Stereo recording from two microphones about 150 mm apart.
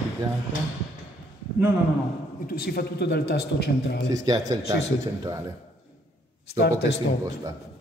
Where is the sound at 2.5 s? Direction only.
90° left.